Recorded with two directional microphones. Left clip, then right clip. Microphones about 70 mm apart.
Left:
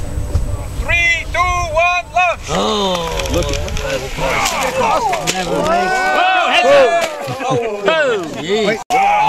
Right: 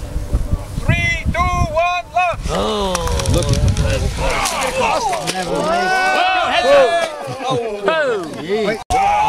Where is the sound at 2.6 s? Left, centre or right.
Left.